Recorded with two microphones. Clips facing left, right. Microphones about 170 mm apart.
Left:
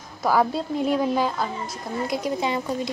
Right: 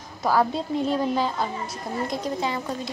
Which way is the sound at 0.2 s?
5° left (ahead or behind).